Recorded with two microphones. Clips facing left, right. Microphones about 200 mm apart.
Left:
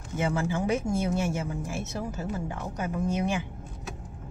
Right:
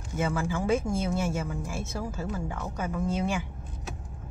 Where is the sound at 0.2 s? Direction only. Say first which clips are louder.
Left 1 dB; 20° left (ahead or behind).